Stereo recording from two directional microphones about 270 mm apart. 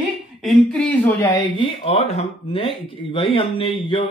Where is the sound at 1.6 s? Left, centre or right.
Left.